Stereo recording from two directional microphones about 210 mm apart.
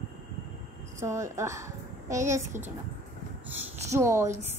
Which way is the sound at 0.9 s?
15° right (ahead or behind).